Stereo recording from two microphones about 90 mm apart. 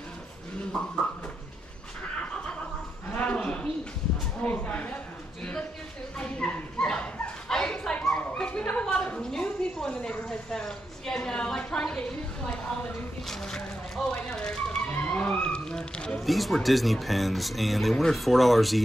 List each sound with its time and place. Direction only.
3.2 s a sound: 15° left (ahead or behind)
6.1 s dog: 10° left (ahead or behind)
13.3 s music: 5° left (ahead or behind)
15.0 s speech: 20° left (ahead or behind); by 18.8 s centre (ahead or behind)